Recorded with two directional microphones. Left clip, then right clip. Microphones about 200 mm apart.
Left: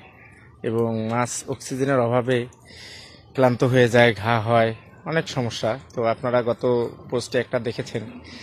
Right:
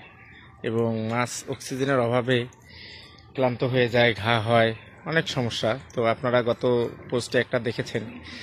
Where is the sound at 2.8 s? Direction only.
25° left (ahead or behind).